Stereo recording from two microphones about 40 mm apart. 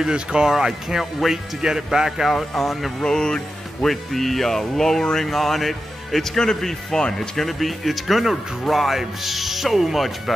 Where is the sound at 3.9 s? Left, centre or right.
Centre.